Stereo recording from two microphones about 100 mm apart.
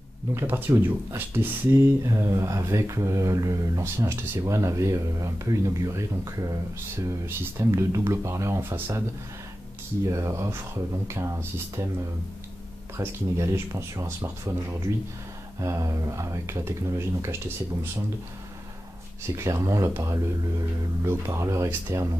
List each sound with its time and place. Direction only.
0.3 s speech: 20° right (ahead or behind)
2.0 s speech: 30° right (ahead or behind)
10.0 s speech: 30° right (ahead or behind)
12.9 s speech: 30° right (ahead or behind)
19.3 s speech: 30° right (ahead or behind)